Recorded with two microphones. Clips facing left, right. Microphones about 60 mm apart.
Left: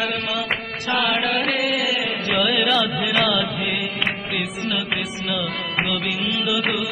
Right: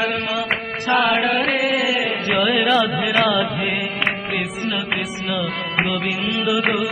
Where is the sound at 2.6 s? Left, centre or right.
Right.